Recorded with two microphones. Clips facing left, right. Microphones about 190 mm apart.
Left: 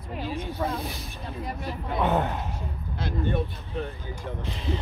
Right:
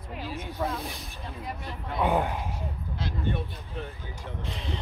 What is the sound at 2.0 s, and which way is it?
Speech, 10° right (ahead or behind).